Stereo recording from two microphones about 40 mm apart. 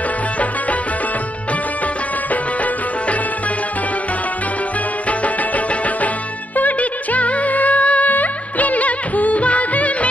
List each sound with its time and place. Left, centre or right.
6.5 s music: left